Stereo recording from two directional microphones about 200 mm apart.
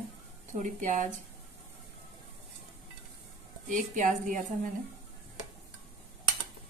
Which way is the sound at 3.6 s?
40° right (ahead or behind).